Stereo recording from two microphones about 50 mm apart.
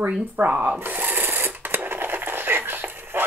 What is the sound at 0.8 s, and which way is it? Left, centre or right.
Sewing machine, right.